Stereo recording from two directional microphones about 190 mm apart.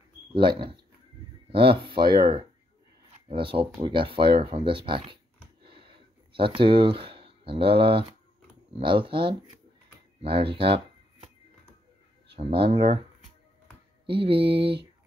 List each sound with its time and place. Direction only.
0.3 s mantra: 25° right (ahead or behind)
3.3 s speech: 25° right (ahead or behind)
8.7 s mantra: 25° right (ahead or behind)
12.4 s speech: 30° right (ahead or behind)
14.0 s mantra: 25° right (ahead or behind)